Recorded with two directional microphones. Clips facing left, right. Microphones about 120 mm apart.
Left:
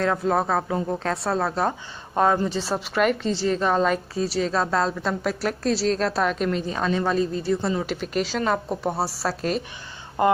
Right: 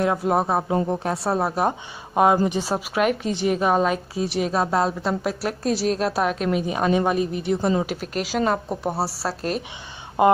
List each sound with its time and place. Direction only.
0.0 s a woman's voice: 15° right (ahead or behind)
6.6 s a woman's voice: 15° right (ahead or behind)
7.8 s a woman's voice: 5° right (ahead or behind)
10.2 s a woman's voice: 15° right (ahead or behind)